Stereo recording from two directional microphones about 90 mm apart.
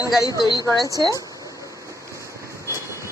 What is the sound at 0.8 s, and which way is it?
Speech, 45° right (ahead or behind).